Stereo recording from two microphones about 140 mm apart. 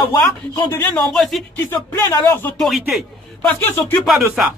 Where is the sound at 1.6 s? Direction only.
15° left (ahead or behind).